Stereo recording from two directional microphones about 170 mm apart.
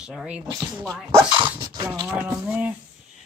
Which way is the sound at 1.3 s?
25° right (ahead or behind).